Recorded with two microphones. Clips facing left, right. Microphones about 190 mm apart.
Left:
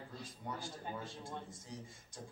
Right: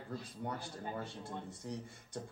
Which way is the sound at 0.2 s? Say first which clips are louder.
Right 3 dB; 65° right (ahead or behind).